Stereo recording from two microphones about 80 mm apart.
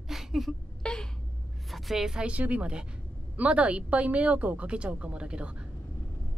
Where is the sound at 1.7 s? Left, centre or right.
Centre.